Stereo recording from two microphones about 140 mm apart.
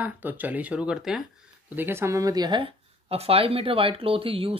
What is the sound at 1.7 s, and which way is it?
Speech, 15° right (ahead or behind).